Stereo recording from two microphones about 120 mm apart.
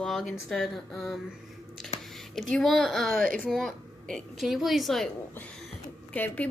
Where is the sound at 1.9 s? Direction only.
55° left (ahead or behind).